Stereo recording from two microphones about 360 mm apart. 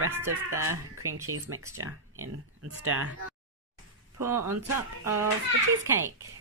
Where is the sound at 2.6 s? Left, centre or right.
Right.